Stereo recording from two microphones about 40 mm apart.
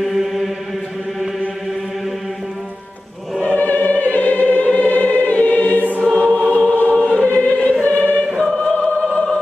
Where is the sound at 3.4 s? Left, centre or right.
Left.